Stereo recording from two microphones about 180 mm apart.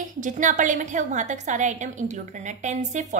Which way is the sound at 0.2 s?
45° right (ahead or behind).